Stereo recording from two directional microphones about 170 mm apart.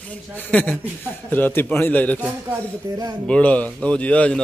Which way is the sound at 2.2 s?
10° right (ahead or behind).